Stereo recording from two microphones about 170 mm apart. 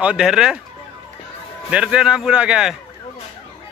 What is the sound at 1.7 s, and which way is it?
Speech, 5° right (ahead or behind).